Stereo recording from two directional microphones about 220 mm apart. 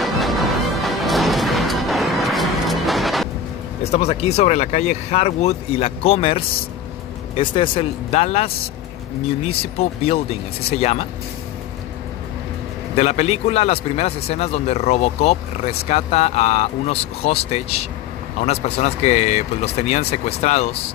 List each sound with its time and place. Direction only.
0.0 s music: centre (ahead or behind)
3.8 s a man's voice: 30° left (ahead or behind)
12.9 s a man's voice: 30° left (ahead or behind)